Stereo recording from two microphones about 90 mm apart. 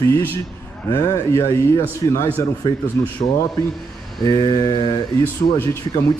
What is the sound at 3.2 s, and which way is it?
Speech, 90° left.